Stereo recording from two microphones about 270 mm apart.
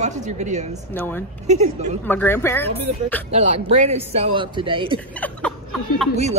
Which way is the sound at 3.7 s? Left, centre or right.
Right.